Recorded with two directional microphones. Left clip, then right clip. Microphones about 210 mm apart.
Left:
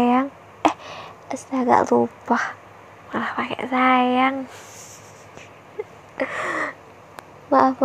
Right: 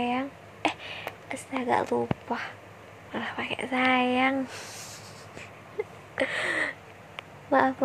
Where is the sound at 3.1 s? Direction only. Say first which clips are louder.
Left 7 dB; 10° left (ahead or behind).